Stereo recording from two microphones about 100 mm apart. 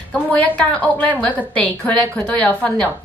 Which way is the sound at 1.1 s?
15° left (ahead or behind).